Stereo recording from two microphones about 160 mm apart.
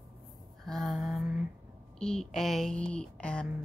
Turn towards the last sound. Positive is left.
turn(degrees=5)  # may be behind; listen again after turning